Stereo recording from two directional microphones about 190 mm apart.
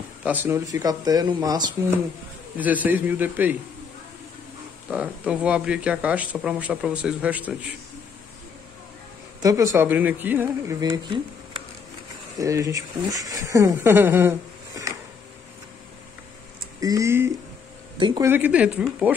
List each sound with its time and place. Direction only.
0.2 s speech: 10° right (ahead or behind)
2.5 s speech: 10° right (ahead or behind)
4.8 s speech: 5° right (ahead or behind)
9.4 s speech: 15° right (ahead or behind)
12.4 s speech: 15° right (ahead or behind)
16.8 s speech: 15° right (ahead or behind)
17.9 s speech: 25° right (ahead or behind)
18.2 s speech: 10° right (ahead or behind)